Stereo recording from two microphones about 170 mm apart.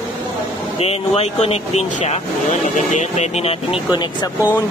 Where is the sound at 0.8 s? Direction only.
35° left (ahead or behind).